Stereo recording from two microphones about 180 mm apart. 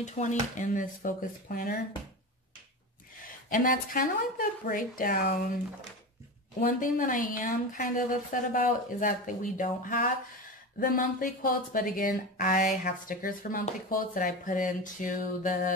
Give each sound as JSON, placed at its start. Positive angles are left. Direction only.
{"t": 0.0, "sound": "a woman's voice", "side_deg": 40}
{"t": 3.4, "sound": "a woman's voice", "side_deg": 50}
{"t": 6.6, "sound": "a woman's voice", "side_deg": 50}
{"t": 12.6, "sound": "a woman's voice", "side_deg": 55}